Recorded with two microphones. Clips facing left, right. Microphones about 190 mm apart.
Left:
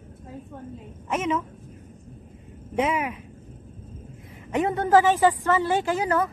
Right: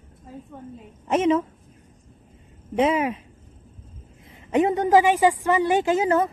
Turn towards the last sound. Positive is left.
turn(degrees=-25)  # may be behind; listen again after turning